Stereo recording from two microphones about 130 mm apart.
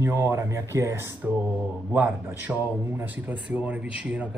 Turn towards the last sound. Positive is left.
turn(degrees=-10)  # may be behind; listen again after turning